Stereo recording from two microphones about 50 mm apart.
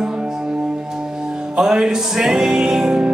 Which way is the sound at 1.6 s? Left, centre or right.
Centre.